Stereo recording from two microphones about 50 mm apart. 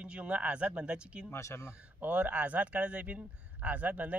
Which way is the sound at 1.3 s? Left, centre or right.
Left.